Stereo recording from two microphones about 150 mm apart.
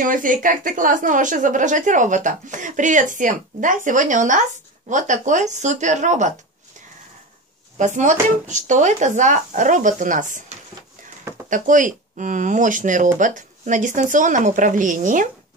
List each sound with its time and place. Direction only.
0.0 s a woman's voice: 65° right (ahead or behind)
7.7 s a woman's voice: 55° right (ahead or behind)
11.5 s a woman's voice: 60° right (ahead or behind)